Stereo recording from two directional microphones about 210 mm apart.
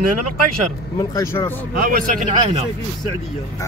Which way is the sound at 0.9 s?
15° left (ahead or behind).